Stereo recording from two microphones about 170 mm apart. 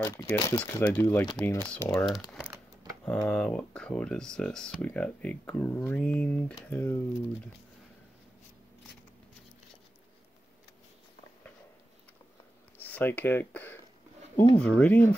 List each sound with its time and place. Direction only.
0.0 s speech: 20° left (ahead or behind)
2.0 s speech: 5° right (ahead or behind); by 7.0 s 15° left (ahead or behind)
12.8 s speech: 10° left (ahead or behind)